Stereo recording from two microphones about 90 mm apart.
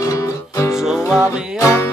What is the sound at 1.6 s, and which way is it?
Music, 30° left (ahead or behind).